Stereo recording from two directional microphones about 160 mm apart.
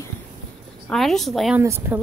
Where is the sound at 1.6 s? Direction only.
15° right (ahead or behind).